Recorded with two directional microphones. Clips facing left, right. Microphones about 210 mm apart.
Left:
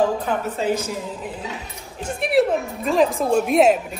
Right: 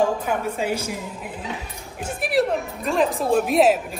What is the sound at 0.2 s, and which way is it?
Speech, 10° right (ahead or behind).